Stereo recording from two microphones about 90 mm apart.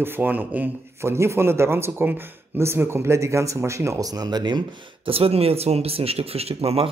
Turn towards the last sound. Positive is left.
turn(degrees=-90)